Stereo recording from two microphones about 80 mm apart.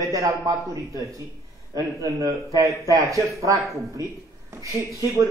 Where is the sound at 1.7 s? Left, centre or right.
Right.